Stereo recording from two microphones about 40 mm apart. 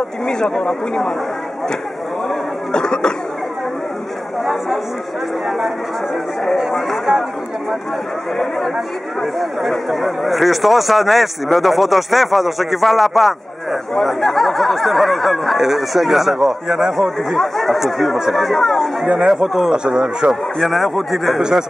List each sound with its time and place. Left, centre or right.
0.3 s speech: centre
2.7 s speech: centre
7.1 s a man's voice: centre
8.4 s speech: centre
16.9 s speech: centre
19.1 s speech: centre
19.7 s a man's voice: centre
20.2 s speech: centre
21.4 s speech: centre